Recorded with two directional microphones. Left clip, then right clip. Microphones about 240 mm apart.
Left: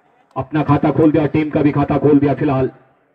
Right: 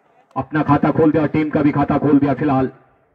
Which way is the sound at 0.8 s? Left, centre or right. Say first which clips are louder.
Left 1 dB; right.